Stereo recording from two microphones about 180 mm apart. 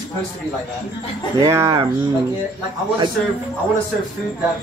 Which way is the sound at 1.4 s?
15° right (ahead or behind).